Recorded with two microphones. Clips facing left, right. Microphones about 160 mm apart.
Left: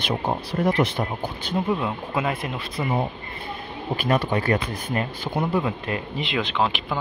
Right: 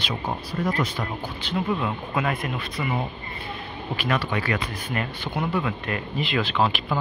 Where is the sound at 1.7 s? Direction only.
20° left (ahead or behind).